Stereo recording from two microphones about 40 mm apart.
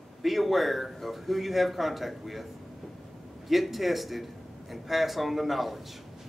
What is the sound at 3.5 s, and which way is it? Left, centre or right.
A man's voice, centre.